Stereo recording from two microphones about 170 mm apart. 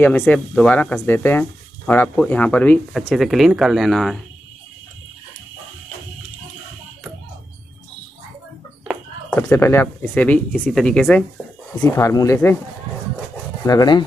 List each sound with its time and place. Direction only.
0.0 s speech: 10° left (ahead or behind)
9.3 s speech: 15° left (ahead or behind)
13.7 s speech: 25° left (ahead or behind)